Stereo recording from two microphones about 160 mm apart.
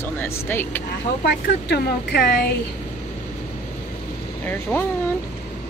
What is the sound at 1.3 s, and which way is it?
Speech, 90° left.